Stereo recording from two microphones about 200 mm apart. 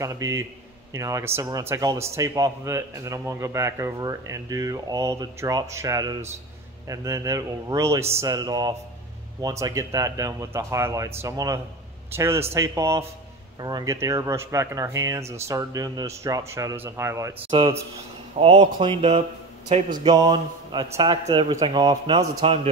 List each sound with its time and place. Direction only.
0.0 s a man's voice: 15° right (ahead or behind)
17.5 s a man's voice: 25° right (ahead or behind)